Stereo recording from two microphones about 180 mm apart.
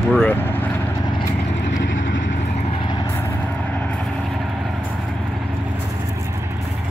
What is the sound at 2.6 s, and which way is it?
Vehicle, 30° left (ahead or behind).